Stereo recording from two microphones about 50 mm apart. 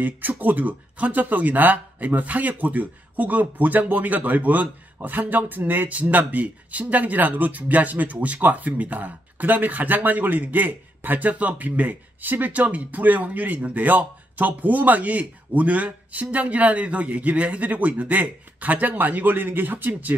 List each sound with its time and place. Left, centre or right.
0.4 s speech: right